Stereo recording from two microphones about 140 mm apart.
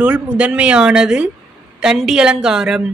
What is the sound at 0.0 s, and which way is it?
A woman's voice, 10° right (ahead or behind).